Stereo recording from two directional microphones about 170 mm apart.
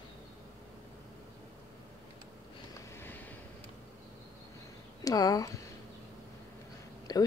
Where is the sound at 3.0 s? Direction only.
10° left (ahead or behind).